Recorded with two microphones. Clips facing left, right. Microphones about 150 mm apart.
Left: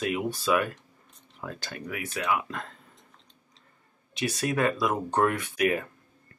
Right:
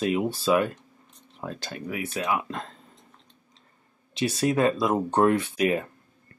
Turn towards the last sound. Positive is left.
turn(degrees=-25)  # may be behind; listen again after turning